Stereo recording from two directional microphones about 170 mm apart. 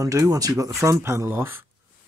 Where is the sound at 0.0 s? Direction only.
20° right (ahead or behind).